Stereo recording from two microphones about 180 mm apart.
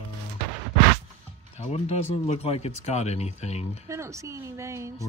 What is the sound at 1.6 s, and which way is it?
A man's voice, 35° left (ahead or behind).